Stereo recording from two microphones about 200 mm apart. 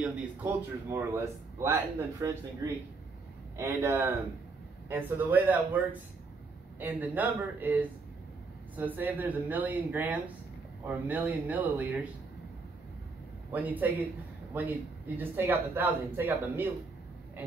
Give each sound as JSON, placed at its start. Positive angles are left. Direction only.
{"t": 0.0, "sound": "speech", "side_deg": -10}
{"t": 6.8, "sound": "speech", "side_deg": -10}
{"t": 13.5, "sound": "speech", "side_deg": -10}